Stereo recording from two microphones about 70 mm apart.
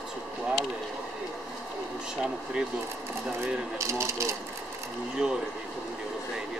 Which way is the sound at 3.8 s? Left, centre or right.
Right.